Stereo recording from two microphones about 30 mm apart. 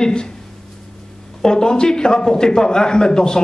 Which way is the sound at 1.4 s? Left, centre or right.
Left.